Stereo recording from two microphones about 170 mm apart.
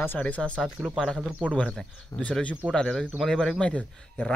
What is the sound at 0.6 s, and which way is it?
A man's voice, 5° right (ahead or behind).